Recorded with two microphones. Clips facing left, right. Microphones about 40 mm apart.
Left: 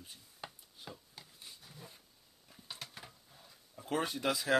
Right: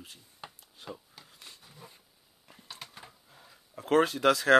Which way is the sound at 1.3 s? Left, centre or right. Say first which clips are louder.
Right 5 dB; right.